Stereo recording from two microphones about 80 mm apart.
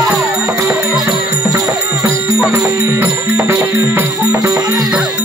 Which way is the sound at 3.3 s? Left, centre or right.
Right.